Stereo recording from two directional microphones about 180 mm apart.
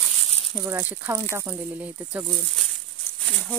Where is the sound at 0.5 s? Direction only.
15° right (ahead or behind); by 3.5 s centre (ahead or behind).